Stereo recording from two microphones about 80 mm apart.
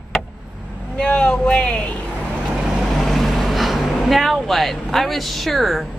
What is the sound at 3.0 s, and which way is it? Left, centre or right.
Vehicle, centre.